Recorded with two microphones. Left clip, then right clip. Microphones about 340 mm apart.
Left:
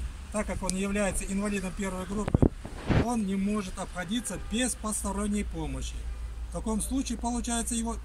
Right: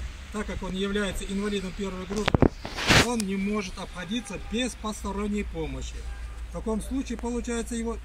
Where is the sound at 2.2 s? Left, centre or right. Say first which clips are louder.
Right 5 dB; right.